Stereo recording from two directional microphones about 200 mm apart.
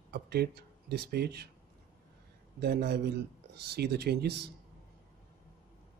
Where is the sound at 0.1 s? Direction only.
55° right (ahead or behind).